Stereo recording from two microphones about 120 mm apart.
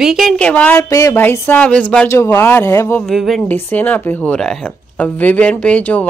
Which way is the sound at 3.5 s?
15° left (ahead or behind).